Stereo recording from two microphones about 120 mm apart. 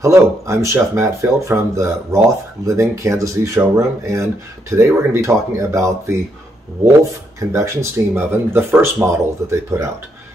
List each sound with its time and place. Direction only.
0.0 s speech: 25° right (ahead or behind)
7.3 s speech: 25° right (ahead or behind)